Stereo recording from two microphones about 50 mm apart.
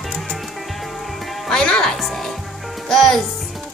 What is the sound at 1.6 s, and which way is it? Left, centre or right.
Speech, centre.